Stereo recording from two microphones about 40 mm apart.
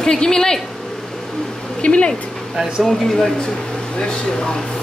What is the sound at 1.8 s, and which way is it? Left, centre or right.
Speech, left.